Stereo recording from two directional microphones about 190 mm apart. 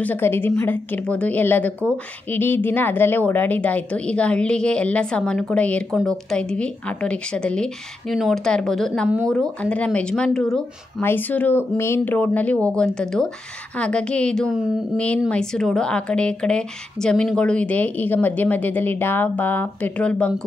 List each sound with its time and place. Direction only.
0.0 s a woman's voice: 10° left (ahead or behind)